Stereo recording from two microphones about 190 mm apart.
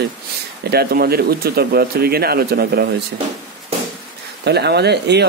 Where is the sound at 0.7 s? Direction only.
55° right (ahead or behind).